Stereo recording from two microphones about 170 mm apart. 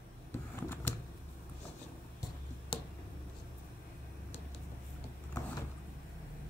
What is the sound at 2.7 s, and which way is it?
Finger snapping, 30° left (ahead or behind).